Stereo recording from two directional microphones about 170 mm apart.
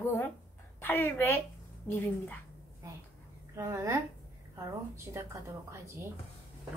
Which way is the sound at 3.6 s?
15° right (ahead or behind).